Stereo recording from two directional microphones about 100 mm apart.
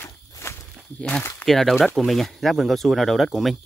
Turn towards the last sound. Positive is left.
turn(degrees=0)  # may be behind; listen again after turning